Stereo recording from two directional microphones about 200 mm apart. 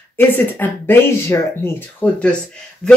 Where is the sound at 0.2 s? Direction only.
10° left (ahead or behind).